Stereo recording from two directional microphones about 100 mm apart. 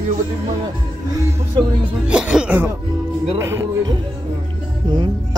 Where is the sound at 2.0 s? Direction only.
10° right (ahead or behind).